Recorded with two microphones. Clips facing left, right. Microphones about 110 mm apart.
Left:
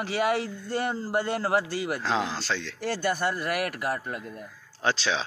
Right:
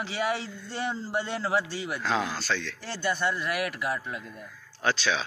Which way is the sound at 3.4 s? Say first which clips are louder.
Left 1 dB; 50° left (ahead or behind).